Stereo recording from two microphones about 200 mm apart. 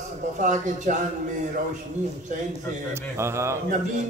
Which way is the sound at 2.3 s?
40° right (ahead or behind).